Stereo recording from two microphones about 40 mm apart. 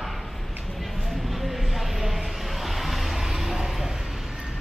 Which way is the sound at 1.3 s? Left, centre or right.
Centre.